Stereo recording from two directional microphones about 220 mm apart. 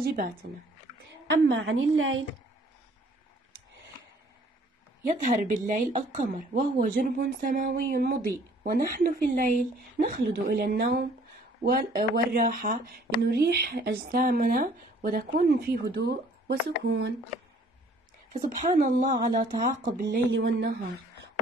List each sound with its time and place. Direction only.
0.0 s a woman's voice: 40° right (ahead or behind)
1.2 s a woman's voice: 55° right (ahead or behind)
5.0 s a woman's voice: 35° right (ahead or behind); by 17.1 s 50° right (ahead or behind)
18.3 s a woman's voice: 35° right (ahead or behind)
20.3 s speech: 55° right (ahead or behind)